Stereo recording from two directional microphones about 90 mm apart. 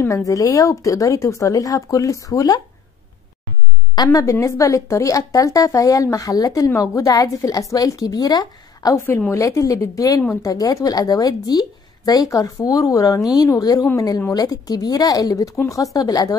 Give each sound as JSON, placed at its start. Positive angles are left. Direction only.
{"t": 0.2, "sound": "a woman's voice", "side_deg": 40}
{"t": 3.9, "sound": "a woman's voice", "side_deg": 45}
{"t": 8.9, "sound": "a woman's voice", "side_deg": 30}